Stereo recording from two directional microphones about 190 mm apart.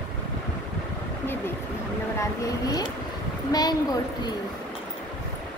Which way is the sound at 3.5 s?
20° left (ahead or behind).